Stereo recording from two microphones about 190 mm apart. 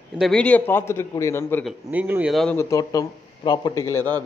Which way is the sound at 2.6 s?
15° left (ahead or behind).